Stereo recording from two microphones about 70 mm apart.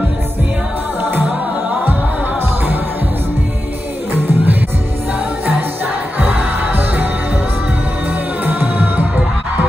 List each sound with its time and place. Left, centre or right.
4.1 s music: right
6.1 s music: right
8.5 s music: right